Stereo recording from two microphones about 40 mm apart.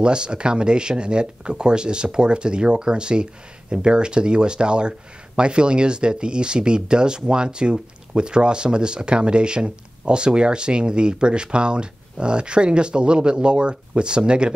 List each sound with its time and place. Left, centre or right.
0.0 s speech: right